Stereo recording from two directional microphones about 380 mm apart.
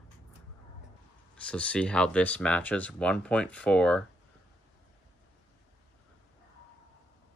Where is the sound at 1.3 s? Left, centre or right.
Centre.